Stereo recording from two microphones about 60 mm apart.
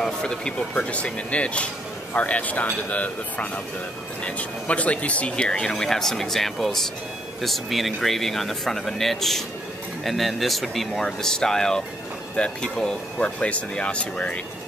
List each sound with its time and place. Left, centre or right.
0.0 s speech: centre